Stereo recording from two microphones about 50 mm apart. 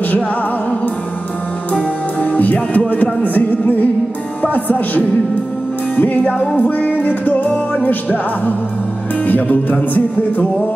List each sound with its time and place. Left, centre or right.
2.1 s music: left
6.6 s music: left